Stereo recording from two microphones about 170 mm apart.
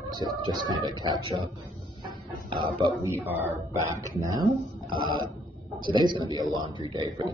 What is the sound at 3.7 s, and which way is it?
Music, 20° right (ahead or behind).